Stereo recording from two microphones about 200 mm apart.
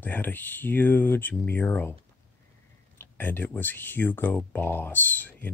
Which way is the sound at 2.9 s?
10° left (ahead or behind).